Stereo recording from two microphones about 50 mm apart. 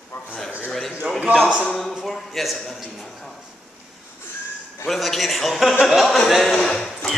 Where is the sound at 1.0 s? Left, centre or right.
Centre.